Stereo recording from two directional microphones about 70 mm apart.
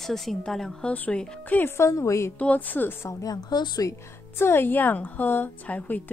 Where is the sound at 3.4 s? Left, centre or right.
Left.